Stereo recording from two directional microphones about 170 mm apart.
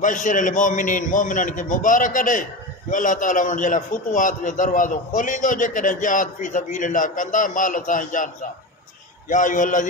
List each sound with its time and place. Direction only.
0.0 s a man's voice: 50° left (ahead or behind)
9.3 s a man's voice: 50° left (ahead or behind)